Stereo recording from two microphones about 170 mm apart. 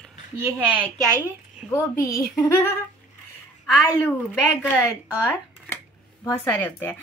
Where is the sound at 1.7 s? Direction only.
20° left (ahead or behind).